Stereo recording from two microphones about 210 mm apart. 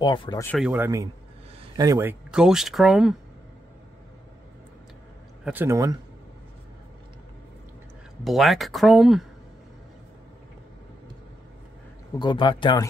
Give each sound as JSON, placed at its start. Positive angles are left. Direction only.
{"t": 0.0, "sound": "speech", "side_deg": 20}
{"t": 0.5, "sound": "speech", "side_deg": 0}
{"t": 5.4, "sound": "speech", "side_deg": -10}
{"t": 8.2, "sound": "speech", "side_deg": 0}
{"t": 12.2, "sound": "speech", "side_deg": 20}